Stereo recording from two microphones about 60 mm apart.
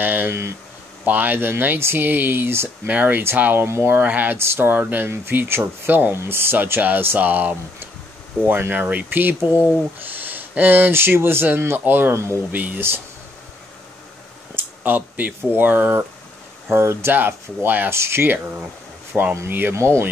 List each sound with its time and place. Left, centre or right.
0.0 s speech: right
0.3 s speech: right
1.0 s speech: right
2.9 s speech: right
3.6 s speech: right
3.9 s speech: right
4.4 s speech: right
6.1 s speech: right
14.5 s a sound: right
15.5 s speech: right
17.3 s speech: right
17.9 s speech: right
19.7 s speech: right